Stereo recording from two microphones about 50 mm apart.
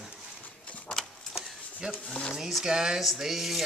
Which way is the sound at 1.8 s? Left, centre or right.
Centre.